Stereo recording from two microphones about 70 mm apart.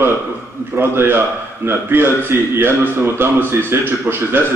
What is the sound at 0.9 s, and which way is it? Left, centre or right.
A man's voice, right.